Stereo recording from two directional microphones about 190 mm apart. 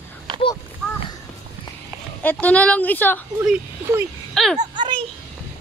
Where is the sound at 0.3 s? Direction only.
25° right (ahead or behind).